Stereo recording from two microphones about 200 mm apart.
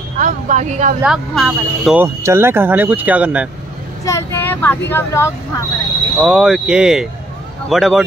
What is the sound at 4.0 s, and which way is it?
Speech, 15° left (ahead or behind).